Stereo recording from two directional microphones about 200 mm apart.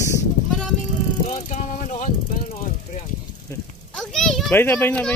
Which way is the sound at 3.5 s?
15° left (ahead or behind).